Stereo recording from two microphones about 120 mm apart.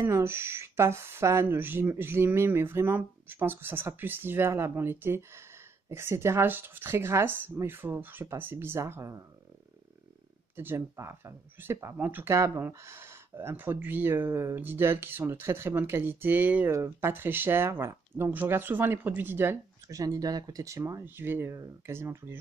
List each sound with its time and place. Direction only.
0.0 s speech: 20° right (ahead or behind)
10.5 s speech: 20° right (ahead or behind)